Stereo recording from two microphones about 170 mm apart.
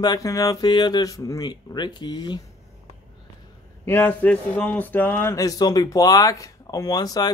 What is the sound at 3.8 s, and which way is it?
Speech, 10° left (ahead or behind).